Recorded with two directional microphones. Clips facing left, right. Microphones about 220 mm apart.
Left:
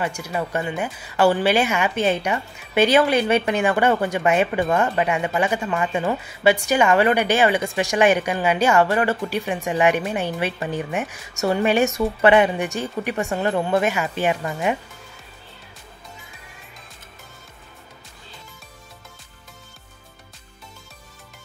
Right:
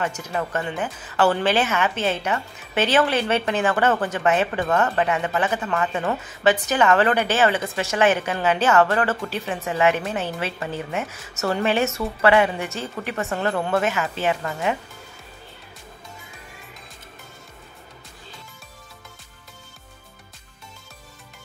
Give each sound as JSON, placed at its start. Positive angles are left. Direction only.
{"t": 0.0, "sound": "speech", "side_deg": 10}